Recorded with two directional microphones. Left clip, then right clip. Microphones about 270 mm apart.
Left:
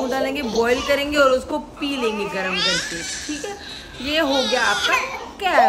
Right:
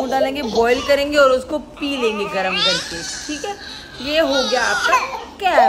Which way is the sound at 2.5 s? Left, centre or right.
Centre.